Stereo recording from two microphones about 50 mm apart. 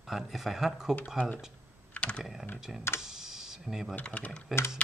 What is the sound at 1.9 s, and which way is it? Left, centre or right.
Computer keyboard, left.